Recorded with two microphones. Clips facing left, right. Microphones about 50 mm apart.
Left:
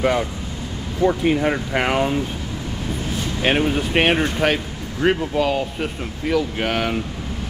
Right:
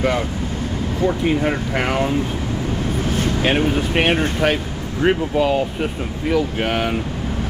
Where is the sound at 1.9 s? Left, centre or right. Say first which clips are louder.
Even; centre.